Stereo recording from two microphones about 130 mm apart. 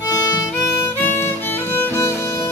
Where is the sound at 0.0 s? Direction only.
20° left (ahead or behind).